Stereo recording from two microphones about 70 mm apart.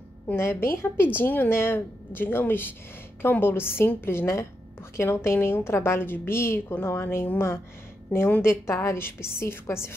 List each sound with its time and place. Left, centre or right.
0.4 s a woman's voice: left